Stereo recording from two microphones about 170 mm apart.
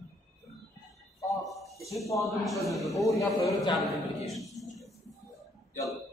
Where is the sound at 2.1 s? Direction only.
Centre (ahead or behind).